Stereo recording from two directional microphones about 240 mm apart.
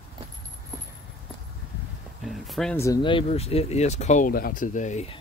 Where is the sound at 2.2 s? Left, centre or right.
Centre; by 5.2 s left.